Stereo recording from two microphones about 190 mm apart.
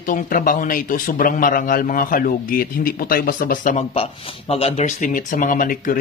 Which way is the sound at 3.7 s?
30° left (ahead or behind).